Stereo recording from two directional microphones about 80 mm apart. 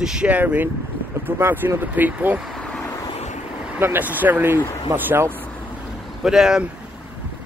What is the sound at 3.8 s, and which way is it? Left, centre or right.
Speech, right.